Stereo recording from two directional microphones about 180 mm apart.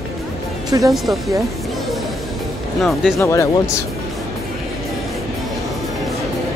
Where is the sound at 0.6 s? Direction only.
20° right (ahead or behind).